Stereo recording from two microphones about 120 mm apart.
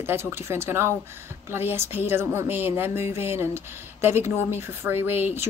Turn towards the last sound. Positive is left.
turn(degrees=-15)  # may be behind; listen again after turning